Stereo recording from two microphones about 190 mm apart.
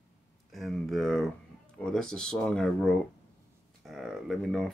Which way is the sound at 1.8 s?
5° left (ahead or behind).